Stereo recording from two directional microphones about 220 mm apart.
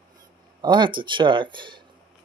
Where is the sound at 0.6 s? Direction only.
20° right (ahead or behind).